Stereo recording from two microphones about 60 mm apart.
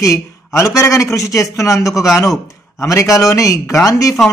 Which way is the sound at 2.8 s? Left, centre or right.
Left.